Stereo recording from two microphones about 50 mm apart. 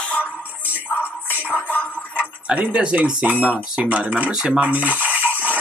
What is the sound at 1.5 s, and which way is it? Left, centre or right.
Music, left.